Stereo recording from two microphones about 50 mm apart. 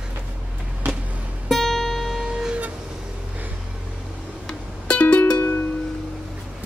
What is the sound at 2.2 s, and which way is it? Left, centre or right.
Vehicle, centre.